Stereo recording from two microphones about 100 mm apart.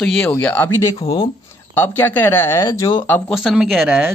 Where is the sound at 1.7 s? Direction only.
20° left (ahead or behind).